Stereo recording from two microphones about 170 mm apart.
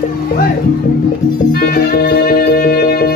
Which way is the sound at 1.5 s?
60° left (ahead or behind).